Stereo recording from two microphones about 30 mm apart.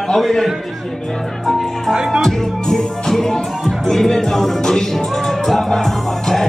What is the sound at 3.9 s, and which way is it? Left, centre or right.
Speech, centre.